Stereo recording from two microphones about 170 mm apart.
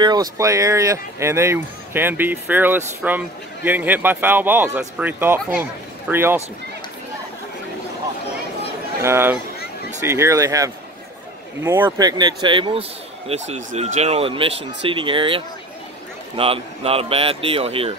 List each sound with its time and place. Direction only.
0.0 s speech: 25° right (ahead or behind)
9.0 s speech: 15° right (ahead or behind)
12.1 s speech: 25° right (ahead or behind)